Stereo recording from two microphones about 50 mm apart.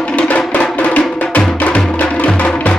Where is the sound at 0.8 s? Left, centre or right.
Left.